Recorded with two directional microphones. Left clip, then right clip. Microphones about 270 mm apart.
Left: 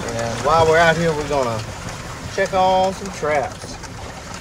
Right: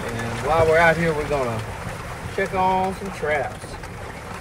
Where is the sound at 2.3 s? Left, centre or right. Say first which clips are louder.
Left 4 dB; centre.